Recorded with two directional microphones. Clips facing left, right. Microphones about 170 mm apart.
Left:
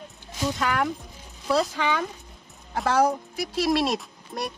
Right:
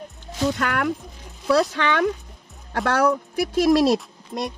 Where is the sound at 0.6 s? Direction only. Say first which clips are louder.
Right 2 dB; 65° right (ahead or behind); by 4.0 s 40° right (ahead or behind).